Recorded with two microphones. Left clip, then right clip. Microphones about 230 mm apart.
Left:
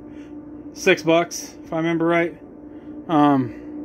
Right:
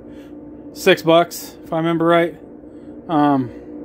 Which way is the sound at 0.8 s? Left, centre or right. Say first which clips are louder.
Right 4 dB; centre.